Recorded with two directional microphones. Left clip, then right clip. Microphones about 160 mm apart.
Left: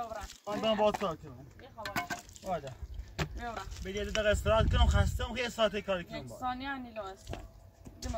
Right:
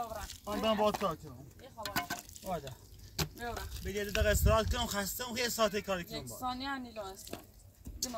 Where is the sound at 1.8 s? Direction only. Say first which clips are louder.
Left 1 dB; 10° right (ahead or behind).